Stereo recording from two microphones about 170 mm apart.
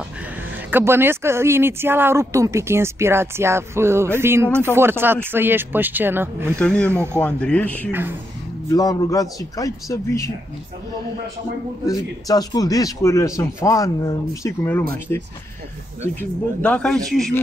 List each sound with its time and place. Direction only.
0.7 s speech: 15° right (ahead or behind)
6.6 s speech: 5° left (ahead or behind)
6.9 s speech: 15° right (ahead or behind)
7.2 s speech: 5° left (ahead or behind)
8.6 s speech: 20° left (ahead or behind)
11.8 s speech: 20° left (ahead or behind)
16.2 s speech: 5° left (ahead or behind)